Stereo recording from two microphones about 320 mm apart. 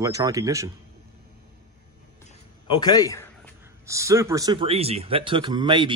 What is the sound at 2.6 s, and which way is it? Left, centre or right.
Speech, centre.